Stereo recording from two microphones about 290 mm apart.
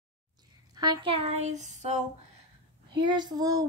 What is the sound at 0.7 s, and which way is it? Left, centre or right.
Speech, centre.